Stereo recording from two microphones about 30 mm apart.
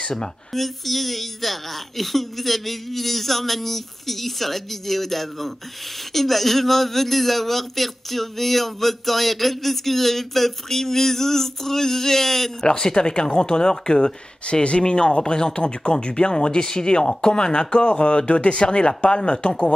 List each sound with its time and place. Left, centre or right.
0.5 s a woman's voice: centre
12.6 s speech: left
14.5 s speech: left